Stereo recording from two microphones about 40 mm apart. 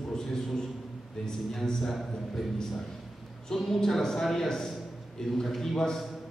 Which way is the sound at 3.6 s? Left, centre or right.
Centre.